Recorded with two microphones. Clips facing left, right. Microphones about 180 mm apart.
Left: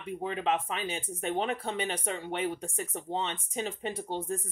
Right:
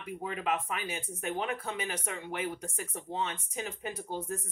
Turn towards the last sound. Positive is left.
turn(degrees=30)  # may be behind; listen again after turning